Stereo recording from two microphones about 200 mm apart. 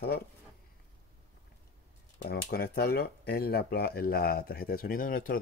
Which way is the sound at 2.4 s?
50° left (ahead or behind).